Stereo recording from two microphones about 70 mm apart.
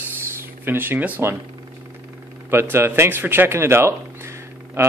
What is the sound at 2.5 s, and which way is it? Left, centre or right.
Speech, right.